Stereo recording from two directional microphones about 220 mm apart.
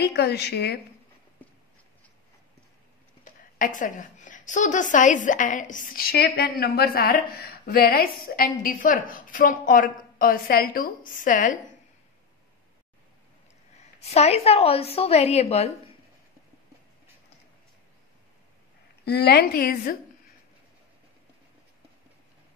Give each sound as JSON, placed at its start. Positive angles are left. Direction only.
{"t": 0.0, "sound": "a woman's voice", "side_deg": 50}
{"t": 3.5, "sound": "a woman's voice", "side_deg": 35}
{"t": 14.0, "sound": "a woman's voice", "side_deg": 30}
{"t": 19.0, "sound": "a woman's voice", "side_deg": 45}